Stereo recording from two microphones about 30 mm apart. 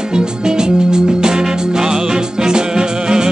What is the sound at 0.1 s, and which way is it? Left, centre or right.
Music, right.